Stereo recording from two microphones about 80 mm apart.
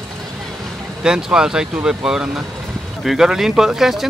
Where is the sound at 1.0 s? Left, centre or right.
Centre.